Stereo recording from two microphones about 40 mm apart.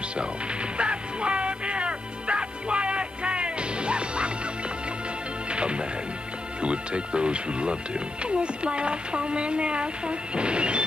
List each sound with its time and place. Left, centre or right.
0.7 s music: right
5.5 s music: right
6.6 s speech: right